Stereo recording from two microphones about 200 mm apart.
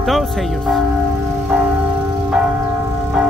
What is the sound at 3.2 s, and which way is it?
Music, 5° right (ahead or behind).